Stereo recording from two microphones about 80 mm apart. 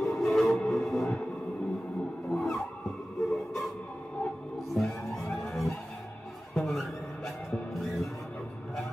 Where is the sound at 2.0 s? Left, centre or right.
Centre.